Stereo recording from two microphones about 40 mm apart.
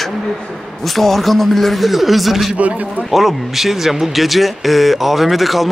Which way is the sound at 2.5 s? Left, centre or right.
Right.